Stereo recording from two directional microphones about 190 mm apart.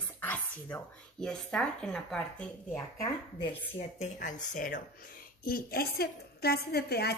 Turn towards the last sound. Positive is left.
turn(degrees=55)  # may be behind; listen again after turning